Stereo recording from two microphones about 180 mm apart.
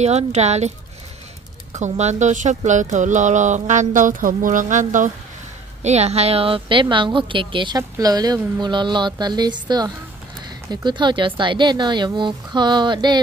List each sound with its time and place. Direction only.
0.0 s a woman's voice: 40° right (ahead or behind)